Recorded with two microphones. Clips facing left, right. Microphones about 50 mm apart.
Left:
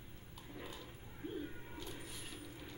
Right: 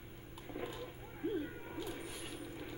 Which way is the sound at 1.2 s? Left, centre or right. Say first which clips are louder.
Right 7 dB; right.